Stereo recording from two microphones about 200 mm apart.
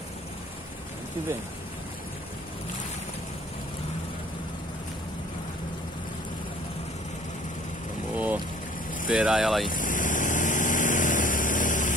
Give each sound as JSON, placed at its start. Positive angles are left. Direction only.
{"t": 9.1, "sound": "speech", "side_deg": -5}
{"t": 9.7, "sound": "vehicle", "side_deg": 40}